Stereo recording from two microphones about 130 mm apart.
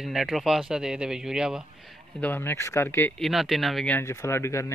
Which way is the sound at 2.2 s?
15° left (ahead or behind).